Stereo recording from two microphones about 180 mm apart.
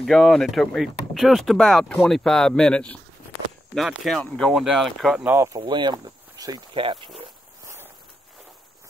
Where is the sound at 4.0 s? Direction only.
5° left (ahead or behind); by 7.1 s 30° right (ahead or behind).